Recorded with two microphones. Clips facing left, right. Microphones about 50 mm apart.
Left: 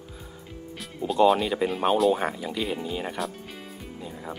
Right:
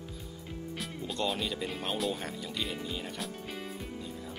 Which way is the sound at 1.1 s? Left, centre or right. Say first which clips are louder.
Left 14 dB; centre.